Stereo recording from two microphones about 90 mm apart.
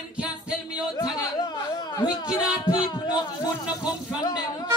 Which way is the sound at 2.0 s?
50° left (ahead or behind).